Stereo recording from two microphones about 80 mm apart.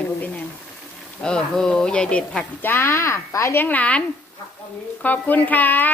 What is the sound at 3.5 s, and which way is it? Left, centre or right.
Speech, left.